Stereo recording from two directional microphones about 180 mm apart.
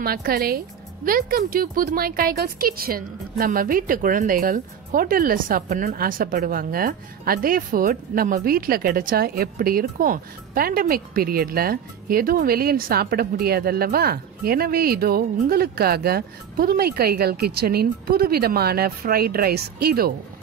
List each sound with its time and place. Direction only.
0.0 s speech: 55° right (ahead or behind)